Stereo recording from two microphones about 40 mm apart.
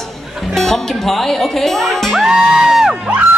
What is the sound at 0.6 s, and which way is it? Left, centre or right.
A man's voice, centre.